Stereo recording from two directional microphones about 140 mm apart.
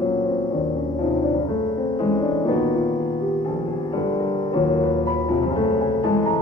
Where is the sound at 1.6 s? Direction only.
30° left (ahead or behind).